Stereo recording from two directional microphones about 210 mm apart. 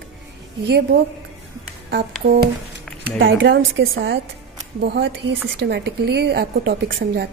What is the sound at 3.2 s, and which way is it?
A woman's voice, 65° right (ahead or behind).